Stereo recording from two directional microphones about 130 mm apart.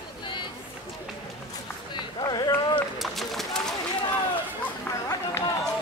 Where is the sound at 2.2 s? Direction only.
30° left (ahead or behind).